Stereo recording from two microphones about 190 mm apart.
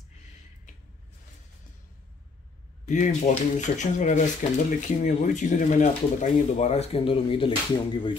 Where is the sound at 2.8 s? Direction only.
40° left (ahead or behind).